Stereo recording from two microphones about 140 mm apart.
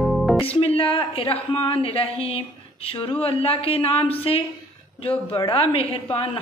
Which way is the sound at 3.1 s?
45° left (ahead or behind).